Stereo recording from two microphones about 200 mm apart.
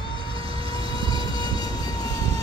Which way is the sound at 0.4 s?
25° right (ahead or behind).